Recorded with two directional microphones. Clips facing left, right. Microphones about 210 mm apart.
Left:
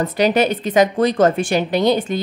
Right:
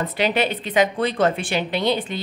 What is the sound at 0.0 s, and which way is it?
A woman's voice, 45° left (ahead or behind).